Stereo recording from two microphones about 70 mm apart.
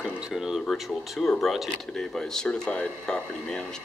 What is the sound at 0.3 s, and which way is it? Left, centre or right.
Speech, centre.